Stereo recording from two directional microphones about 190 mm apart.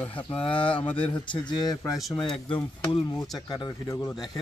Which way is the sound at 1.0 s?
25° left (ahead or behind).